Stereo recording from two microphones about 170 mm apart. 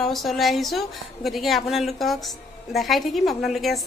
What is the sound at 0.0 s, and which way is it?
A woman's voice, centre (ahead or behind).